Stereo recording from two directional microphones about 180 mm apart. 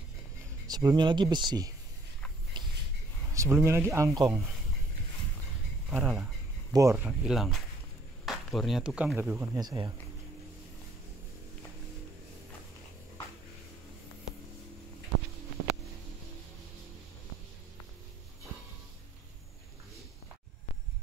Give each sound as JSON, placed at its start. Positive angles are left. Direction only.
{"t": 0.7, "sound": "speech", "side_deg": -20}
{"t": 3.3, "sound": "speech", "side_deg": -15}
{"t": 5.9, "sound": "speech", "side_deg": 0}
{"t": 6.7, "sound": "speech", "side_deg": -15}
{"t": 7.1, "sound": "speech", "side_deg": 0}
{"t": 9.6, "sound": "speech", "side_deg": -20}